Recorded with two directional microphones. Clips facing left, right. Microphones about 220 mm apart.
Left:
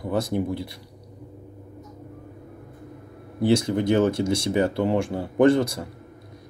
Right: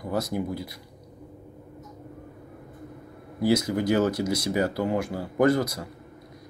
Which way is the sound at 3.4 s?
25° left (ahead or behind).